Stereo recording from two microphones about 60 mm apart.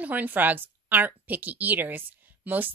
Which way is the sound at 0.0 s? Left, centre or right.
Right.